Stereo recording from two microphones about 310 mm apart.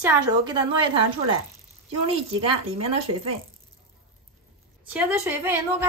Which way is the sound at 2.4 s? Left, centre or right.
Centre.